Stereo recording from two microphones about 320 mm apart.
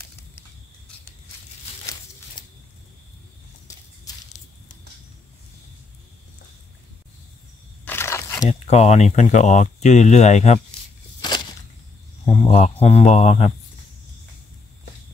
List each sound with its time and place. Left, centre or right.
7.8 s speech: centre
11.1 s a sound: centre
12.4 s speech: left